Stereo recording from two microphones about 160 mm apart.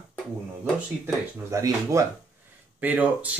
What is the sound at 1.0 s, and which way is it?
Speech, 20° right (ahead or behind).